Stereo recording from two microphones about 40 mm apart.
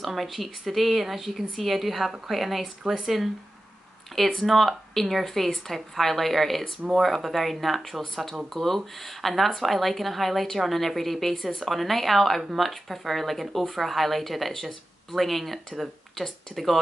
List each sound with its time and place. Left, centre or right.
0.0 s speech: centre
4.4 s speech: centre
6.8 s speech: centre
7.2 s speech: centre